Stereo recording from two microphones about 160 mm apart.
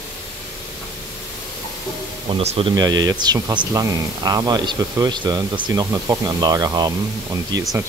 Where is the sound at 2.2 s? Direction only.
35° right (ahead or behind).